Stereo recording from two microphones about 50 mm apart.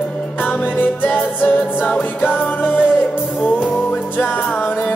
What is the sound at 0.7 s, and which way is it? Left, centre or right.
Music, left.